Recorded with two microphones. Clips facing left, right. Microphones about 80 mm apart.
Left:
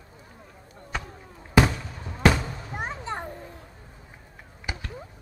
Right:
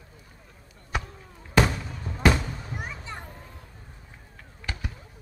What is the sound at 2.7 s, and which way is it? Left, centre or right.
Children playing, left.